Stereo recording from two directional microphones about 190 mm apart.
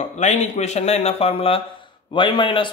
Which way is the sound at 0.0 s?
40° left (ahead or behind).